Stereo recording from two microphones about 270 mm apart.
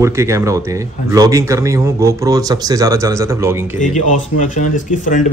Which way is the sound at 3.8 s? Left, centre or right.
Left.